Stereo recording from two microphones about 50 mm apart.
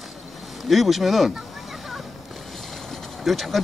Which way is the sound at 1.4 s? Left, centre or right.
Centre.